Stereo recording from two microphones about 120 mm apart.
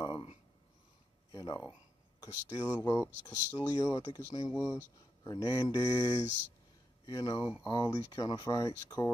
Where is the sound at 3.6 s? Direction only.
30° left (ahead or behind).